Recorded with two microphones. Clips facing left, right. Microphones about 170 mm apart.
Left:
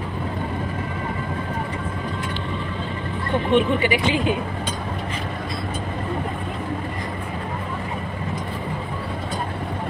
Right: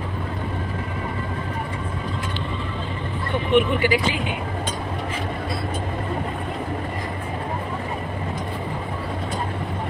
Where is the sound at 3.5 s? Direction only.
25° left (ahead or behind).